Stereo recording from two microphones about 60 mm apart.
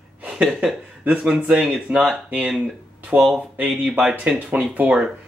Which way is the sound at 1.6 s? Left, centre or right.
Right.